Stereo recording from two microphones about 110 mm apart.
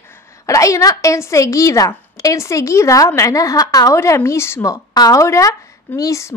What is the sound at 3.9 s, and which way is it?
Speech, 25° left (ahead or behind).